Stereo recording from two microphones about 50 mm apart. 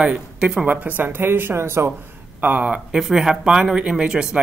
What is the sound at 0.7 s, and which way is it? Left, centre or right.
Speech, right.